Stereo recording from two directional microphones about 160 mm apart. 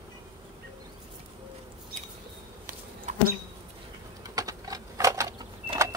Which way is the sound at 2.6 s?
60° right (ahead or behind).